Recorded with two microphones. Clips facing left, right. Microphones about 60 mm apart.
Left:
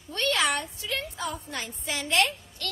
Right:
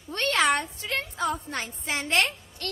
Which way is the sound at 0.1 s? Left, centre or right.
Right.